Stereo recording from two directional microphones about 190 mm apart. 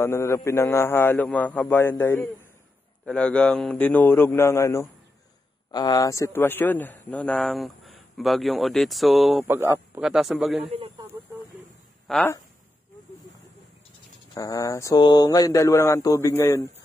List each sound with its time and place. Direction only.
0.0 s a man's voice: 15° left (ahead or behind)
9.5 s a man's voice: 10° right (ahead or behind)
12.1 s speech: 10° left (ahead or behind)
14.3 s speech: 20° left (ahead or behind)